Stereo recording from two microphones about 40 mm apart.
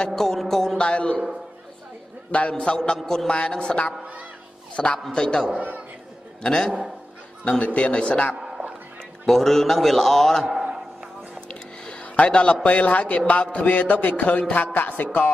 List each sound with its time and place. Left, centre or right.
0.0 s a man's voice: centre
0.4 s music: centre
0.7 s a man's voice: left
2.3 s a man's voice: left
3.0 s a man's voice: centre
3.3 s a man's voice: left
4.9 s a man's voice: centre
7.4 s a man's voice: left
8.4 s a sound: centre
9.2 s a man's voice: centre
10.5 s a sound: centre
11.4 s music: left
12.6 s a man's voice: left